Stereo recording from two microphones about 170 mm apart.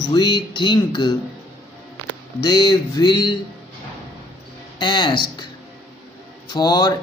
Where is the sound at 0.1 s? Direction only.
25° left (ahead or behind).